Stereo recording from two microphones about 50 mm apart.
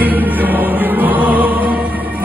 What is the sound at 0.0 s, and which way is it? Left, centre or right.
Music, right.